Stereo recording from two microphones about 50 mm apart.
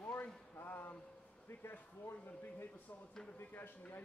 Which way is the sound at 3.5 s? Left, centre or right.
Left.